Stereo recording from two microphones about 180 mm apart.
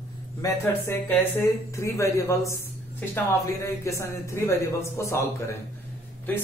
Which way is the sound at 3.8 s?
15° left (ahead or behind).